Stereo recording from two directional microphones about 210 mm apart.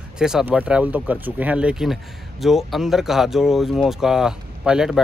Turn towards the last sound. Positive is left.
turn(degrees=-5)  # may be behind; listen again after turning